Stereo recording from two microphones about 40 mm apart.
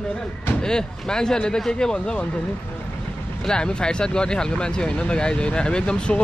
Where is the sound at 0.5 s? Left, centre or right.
Centre.